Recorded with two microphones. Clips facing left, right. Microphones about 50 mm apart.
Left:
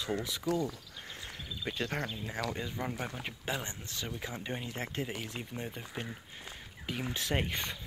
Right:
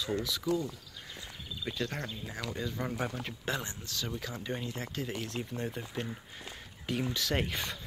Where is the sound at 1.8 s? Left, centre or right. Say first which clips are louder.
Left 2 dB; left.